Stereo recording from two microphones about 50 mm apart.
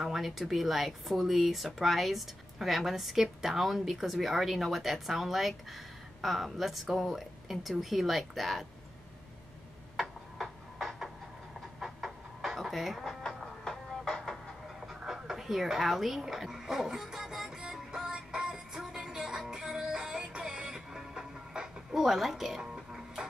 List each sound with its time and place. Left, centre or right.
0.0 s speech: centre
9.9 s a sound: centre
11.8 s chicken: centre
13.7 s music: centre
14.8 s speech: centre
17.6 s music: centre
22.6 s music: centre